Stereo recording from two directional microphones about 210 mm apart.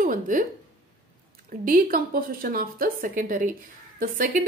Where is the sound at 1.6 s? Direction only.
45° right (ahead or behind).